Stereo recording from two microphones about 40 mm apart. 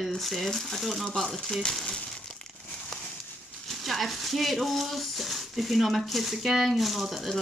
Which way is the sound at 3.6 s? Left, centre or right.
Centre.